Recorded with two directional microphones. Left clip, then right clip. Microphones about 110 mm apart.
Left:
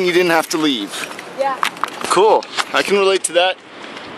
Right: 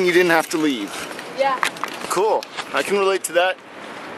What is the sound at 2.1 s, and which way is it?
Speech, 40° left (ahead or behind).